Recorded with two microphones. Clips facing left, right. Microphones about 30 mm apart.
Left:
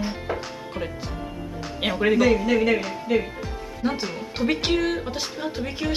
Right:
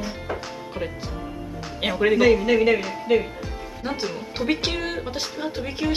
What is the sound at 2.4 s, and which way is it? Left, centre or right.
Speech, centre.